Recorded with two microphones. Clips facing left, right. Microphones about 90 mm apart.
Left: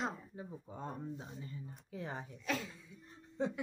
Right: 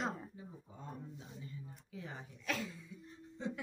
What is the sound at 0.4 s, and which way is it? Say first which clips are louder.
Speech: left 7 dB; 55° left (ahead or behind).